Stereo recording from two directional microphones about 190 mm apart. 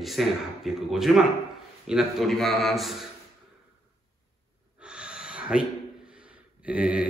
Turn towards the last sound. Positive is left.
turn(degrees=-5)  # may be behind; listen again after turning